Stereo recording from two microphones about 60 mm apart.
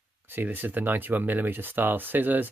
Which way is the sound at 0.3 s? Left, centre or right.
Right.